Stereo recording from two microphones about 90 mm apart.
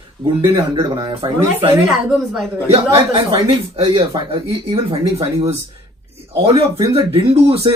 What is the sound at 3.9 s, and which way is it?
Speech, 50° right (ahead or behind).